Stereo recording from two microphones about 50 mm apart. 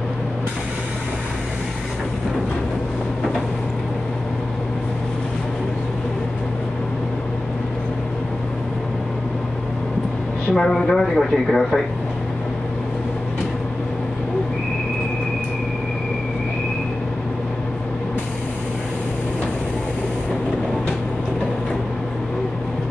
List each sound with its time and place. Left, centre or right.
10.5 s speech: centre